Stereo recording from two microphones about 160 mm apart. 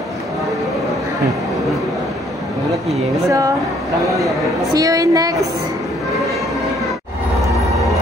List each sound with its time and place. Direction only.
3.3 s a woman's voice: 20° right (ahead or behind)
4.7 s a woman's voice: 20° right (ahead or behind)